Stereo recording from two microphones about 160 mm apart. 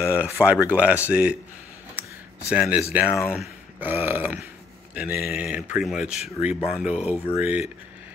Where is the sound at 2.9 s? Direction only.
10° right (ahead or behind).